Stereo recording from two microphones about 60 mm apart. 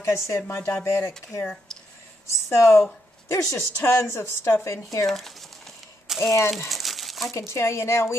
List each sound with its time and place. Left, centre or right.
0.0 s speech: left
2.2 s speech: left
5.0 s speech: centre
6.0 s a sound: centre
6.7 s crumpling: centre
7.3 s speech: left